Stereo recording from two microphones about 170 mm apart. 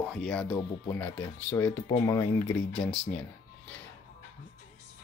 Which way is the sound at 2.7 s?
5° left (ahead or behind).